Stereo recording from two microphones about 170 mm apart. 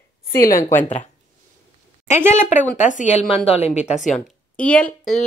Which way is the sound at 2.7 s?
45° left (ahead or behind).